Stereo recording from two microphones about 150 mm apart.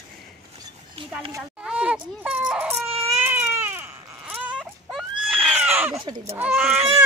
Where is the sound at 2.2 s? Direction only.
10° right (ahead or behind).